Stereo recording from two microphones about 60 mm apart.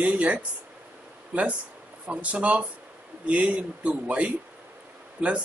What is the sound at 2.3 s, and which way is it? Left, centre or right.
Speech, right.